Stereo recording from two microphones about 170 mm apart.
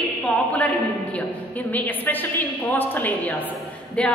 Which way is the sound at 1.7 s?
10° left (ahead or behind).